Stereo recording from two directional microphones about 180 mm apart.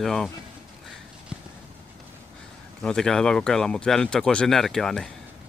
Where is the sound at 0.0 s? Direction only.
Centre (ahead or behind).